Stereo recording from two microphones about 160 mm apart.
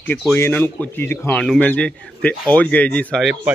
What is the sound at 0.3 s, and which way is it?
A man's voice, 10° left (ahead or behind).